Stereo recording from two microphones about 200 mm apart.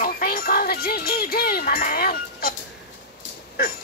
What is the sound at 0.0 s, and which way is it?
Music, 45° left (ahead or behind).